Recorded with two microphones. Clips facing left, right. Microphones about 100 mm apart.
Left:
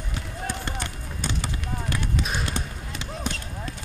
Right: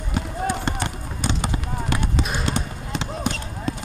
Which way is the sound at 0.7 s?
60° right (ahead or behind).